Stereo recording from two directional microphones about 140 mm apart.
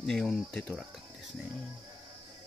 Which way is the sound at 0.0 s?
5° left (ahead or behind).